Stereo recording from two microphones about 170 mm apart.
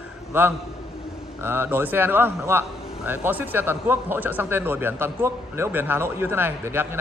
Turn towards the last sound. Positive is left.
turn(degrees=-15)  # may be behind; listen again after turning